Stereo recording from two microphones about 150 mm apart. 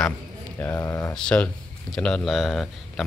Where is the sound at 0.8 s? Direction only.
20° left (ahead or behind).